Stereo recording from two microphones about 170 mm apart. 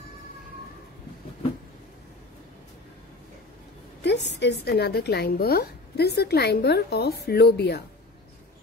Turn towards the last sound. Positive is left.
turn(degrees=70)  # may be behind; listen again after turning